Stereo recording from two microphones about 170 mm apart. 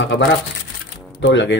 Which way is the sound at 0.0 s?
90° left.